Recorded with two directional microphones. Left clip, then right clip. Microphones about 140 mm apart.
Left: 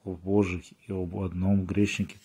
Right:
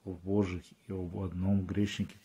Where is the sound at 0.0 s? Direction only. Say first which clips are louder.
Left 6 dB; 35° left (ahead or behind).